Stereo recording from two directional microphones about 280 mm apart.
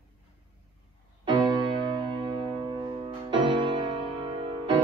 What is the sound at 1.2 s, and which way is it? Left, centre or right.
Music, centre.